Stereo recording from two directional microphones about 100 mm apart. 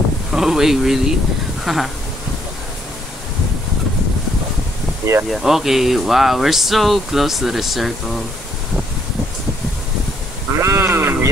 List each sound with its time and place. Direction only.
0.3 s speech: 5° right (ahead or behind)
1.6 s a sound: centre (ahead or behind)
5.3 s speech: 5° right (ahead or behind)
10.5 s sheep: 25° right (ahead or behind)